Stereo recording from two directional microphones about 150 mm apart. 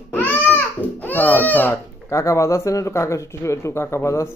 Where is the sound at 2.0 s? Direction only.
20° left (ahead or behind).